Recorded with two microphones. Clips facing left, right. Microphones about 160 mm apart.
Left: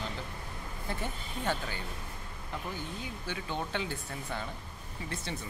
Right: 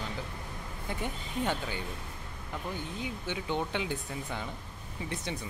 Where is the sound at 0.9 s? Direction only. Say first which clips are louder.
Right 1 dB; 15° right (ahead or behind).